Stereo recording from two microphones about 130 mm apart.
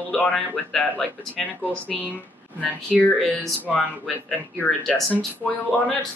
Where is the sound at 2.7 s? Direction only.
10° left (ahead or behind).